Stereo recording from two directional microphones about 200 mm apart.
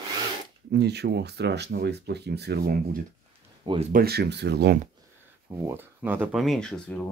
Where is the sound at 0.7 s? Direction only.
55° right (ahead or behind).